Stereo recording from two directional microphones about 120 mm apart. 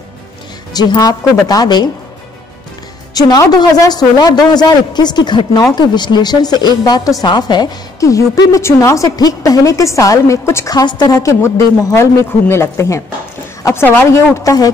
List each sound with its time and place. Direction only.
0.7 s a man's voice: 35° left (ahead or behind)
3.2 s a man's voice: 35° left (ahead or behind)
13.6 s a sound: 25° left (ahead or behind)
13.8 s a woman's voice: 20° left (ahead or behind)